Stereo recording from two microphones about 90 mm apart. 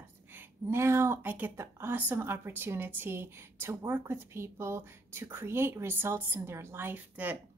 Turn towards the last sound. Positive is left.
turn(degrees=-20)  # may be behind; listen again after turning